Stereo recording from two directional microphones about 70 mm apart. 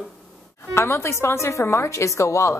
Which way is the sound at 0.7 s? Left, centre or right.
Left.